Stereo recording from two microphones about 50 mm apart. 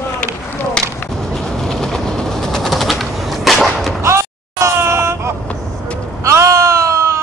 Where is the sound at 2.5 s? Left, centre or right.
Centre.